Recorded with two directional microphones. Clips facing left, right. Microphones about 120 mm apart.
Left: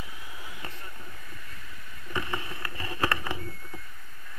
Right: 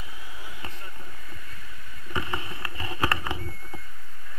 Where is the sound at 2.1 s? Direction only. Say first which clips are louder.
Right 1 dB; 20° right (ahead or behind).